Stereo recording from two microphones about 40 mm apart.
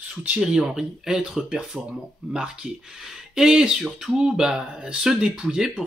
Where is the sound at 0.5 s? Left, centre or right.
Centre.